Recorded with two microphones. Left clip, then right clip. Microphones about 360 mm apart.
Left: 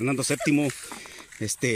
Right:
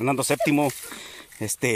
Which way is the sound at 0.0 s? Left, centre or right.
Centre.